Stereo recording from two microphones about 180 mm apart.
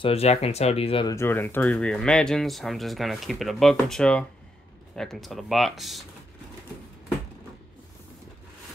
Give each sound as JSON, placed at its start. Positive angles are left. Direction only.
{"t": 0.0, "sound": "speech", "side_deg": 35}
{"t": 1.1, "sound": "speech", "side_deg": 15}